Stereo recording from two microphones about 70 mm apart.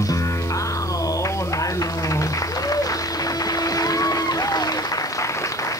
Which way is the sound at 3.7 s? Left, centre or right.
Left.